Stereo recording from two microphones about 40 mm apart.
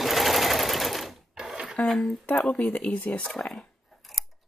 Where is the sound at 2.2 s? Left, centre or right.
Left.